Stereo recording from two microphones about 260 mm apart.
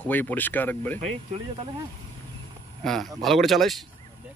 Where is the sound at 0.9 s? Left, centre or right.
Right.